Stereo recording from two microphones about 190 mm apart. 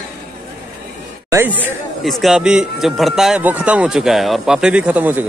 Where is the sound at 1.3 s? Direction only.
10° right (ahead or behind).